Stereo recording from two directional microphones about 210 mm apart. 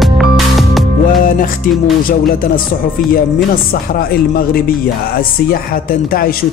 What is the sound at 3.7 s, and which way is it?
Speech, 45° left (ahead or behind).